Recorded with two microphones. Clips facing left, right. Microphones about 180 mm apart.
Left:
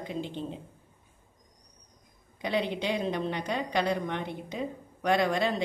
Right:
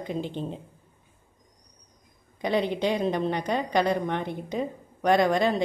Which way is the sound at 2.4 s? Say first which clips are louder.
Right 4 dB; 45° right (ahead or behind).